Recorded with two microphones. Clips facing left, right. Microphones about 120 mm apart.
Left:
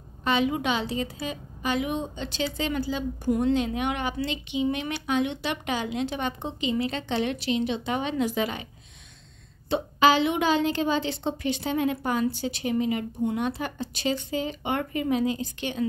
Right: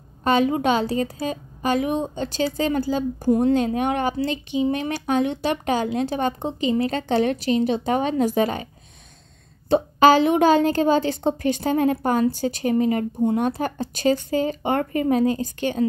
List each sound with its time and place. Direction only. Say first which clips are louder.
0.2 s a woman's voice: right 6 dB; 40° right (ahead or behind)
9.7 s a woman's voice: right 6 dB; 45° right (ahead or behind)